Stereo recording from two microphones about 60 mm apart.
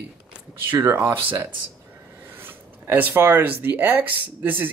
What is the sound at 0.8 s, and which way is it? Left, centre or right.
Speech, right.